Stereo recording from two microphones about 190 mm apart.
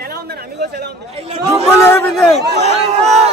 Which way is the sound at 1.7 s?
10° left (ahead or behind).